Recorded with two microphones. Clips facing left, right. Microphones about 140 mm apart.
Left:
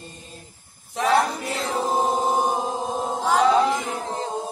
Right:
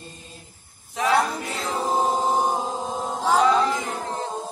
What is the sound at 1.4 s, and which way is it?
Mantra, centre (ahead or behind).